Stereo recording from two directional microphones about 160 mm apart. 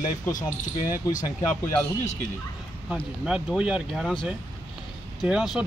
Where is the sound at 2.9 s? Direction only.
5° right (ahead or behind).